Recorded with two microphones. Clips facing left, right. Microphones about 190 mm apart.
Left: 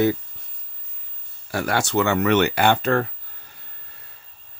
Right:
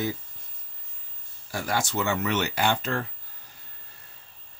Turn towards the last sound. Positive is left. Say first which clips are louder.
# left 7 dB
turn(degrees=60)  # may be behind; listen again after turning